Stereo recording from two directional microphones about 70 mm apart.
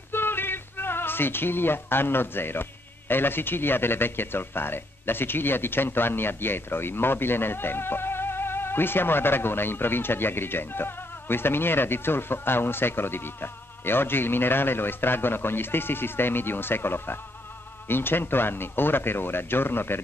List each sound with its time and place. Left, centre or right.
0.1 s speech: left